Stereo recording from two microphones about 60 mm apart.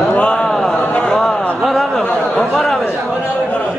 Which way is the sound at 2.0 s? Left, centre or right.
Centre.